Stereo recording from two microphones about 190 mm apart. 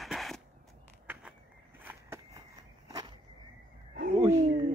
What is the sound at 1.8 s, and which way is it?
Walk, 10° right (ahead or behind).